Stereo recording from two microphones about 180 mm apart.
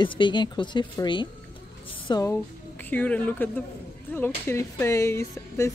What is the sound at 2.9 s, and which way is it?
Speech, 10° left (ahead or behind).